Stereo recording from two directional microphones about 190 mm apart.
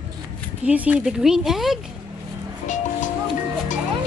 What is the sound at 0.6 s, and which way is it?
A woman's voice, 5° right (ahead or behind).